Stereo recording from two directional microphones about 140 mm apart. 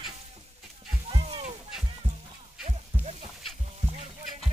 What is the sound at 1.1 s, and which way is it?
Fowl, 45° right (ahead or behind).